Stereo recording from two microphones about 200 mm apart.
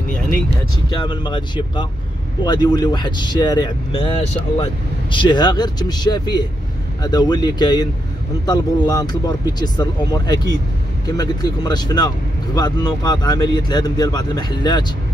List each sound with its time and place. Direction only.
0.8 s speech: 20° left (ahead or behind)
5.1 s speech: 25° left (ahead or behind)